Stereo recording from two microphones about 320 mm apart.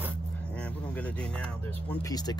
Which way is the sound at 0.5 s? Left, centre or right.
Centre.